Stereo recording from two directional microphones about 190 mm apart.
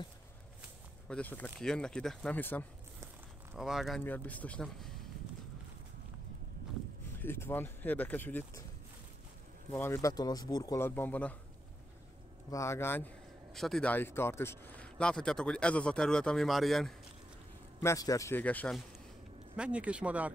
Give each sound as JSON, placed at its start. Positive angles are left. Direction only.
{"t": 1.0, "sound": "a man's voice", "side_deg": 5}
{"t": 3.5, "sound": "a man's voice", "side_deg": 0}
{"t": 7.2, "sound": "speech", "side_deg": 10}
{"t": 9.7, "sound": "speech", "side_deg": 10}
{"t": 12.4, "sound": "a man's voice", "side_deg": 15}
{"t": 17.8, "sound": "speech", "side_deg": 15}
{"t": 19.5, "sound": "speech", "side_deg": -5}